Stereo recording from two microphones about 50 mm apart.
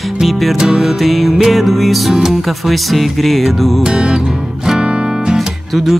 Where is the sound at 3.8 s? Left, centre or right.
Centre.